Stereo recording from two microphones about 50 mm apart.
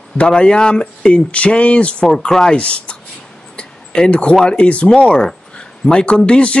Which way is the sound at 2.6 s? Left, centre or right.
Left.